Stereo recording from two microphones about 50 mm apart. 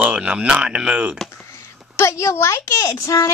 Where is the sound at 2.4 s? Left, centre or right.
Left.